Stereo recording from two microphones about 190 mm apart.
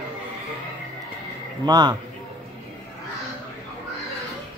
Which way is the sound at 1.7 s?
20° right (ahead or behind).